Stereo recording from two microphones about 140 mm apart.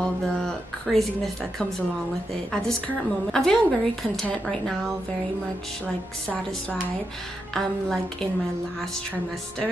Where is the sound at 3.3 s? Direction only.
5° left (ahead or behind).